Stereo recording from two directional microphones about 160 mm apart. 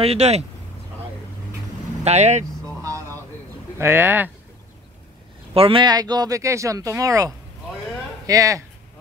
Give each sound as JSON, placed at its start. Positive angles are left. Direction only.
{"t": 0.0, "sound": "speech", "side_deg": -40}
{"t": 2.0, "sound": "speech", "side_deg": -45}
{"t": 2.8, "sound": "a sound", "side_deg": -20}
{"t": 3.7, "sound": "speech", "side_deg": -15}
{"t": 5.5, "sound": "speech", "side_deg": -35}